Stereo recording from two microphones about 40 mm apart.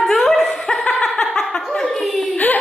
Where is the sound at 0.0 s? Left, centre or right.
Centre.